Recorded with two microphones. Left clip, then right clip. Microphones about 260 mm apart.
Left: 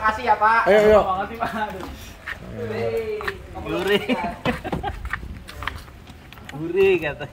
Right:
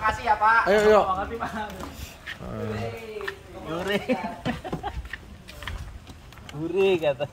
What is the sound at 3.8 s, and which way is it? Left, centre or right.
Speech, centre.